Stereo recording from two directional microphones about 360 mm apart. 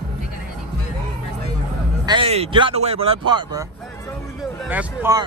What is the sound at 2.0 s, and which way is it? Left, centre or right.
Speech, centre.